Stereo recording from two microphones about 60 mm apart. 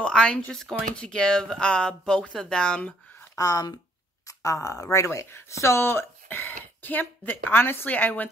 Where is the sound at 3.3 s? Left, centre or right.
Left.